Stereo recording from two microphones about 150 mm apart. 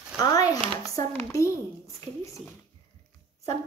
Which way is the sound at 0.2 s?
25° left (ahead or behind).